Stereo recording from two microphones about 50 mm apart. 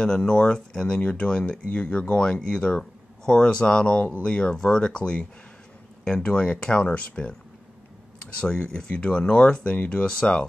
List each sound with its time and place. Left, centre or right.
0.0 s speech: centre
8.4 s speech: centre